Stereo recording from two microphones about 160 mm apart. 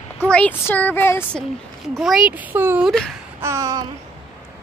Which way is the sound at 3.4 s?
20° right (ahead or behind).